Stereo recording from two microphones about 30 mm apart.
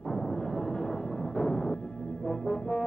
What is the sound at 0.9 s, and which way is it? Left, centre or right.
Music, left.